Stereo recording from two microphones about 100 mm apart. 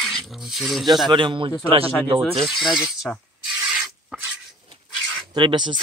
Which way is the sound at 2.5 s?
Centre (ahead or behind).